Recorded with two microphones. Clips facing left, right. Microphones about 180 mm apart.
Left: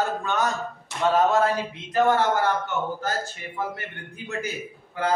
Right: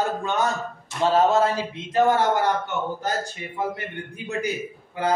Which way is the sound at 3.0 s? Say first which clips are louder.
Right 2 dB; 15° right (ahead or behind).